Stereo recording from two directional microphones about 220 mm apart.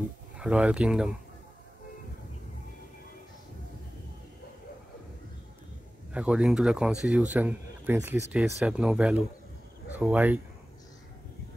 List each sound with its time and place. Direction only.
0.4 s speech: 5° right (ahead or behind)
6.1 s speech: 5° right (ahead or behind)